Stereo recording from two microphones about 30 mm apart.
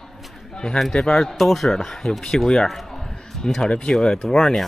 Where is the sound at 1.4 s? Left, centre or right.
Centre.